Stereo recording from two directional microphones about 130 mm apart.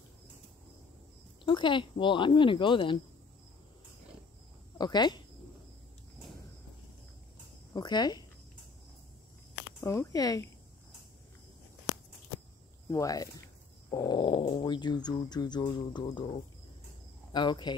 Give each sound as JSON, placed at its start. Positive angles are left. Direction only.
{"t": 1.4, "sound": "speech", "side_deg": 40}
{"t": 4.7, "sound": "speech", "side_deg": 30}
{"t": 7.7, "sound": "speech", "side_deg": 35}
{"t": 9.8, "sound": "speech", "side_deg": 25}
{"t": 12.9, "sound": "speech", "side_deg": 25}
{"t": 17.3, "sound": "speech", "side_deg": 35}